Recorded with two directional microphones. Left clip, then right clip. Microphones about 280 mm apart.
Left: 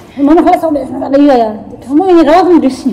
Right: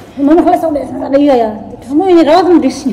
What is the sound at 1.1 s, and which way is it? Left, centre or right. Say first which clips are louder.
Speech: left 1 dB; left.